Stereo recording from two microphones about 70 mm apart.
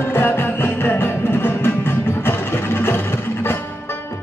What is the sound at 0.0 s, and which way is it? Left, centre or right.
Music, left.